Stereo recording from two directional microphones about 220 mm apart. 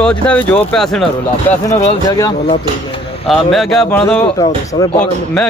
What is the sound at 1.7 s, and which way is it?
Speech, 15° left (ahead or behind).